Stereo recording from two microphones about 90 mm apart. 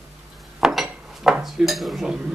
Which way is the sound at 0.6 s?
5° right (ahead or behind).